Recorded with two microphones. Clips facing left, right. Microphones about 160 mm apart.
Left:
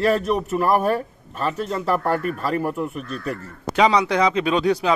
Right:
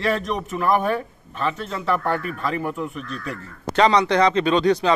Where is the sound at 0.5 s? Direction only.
40° left (ahead or behind).